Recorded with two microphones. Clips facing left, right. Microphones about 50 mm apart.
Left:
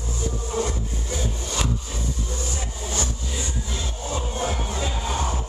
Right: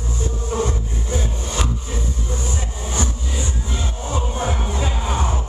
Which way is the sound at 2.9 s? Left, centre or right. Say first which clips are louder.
Right 5 dB; right.